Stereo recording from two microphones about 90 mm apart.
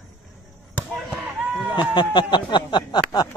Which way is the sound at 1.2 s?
20° right (ahead or behind).